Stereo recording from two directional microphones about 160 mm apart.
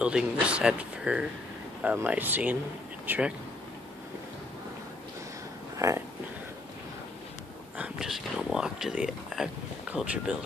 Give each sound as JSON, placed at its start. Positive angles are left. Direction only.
{"t": 0.0, "sound": "speech", "side_deg": -5}
{"t": 5.8, "sound": "speech", "side_deg": -20}
{"t": 7.7, "sound": "speech", "side_deg": -5}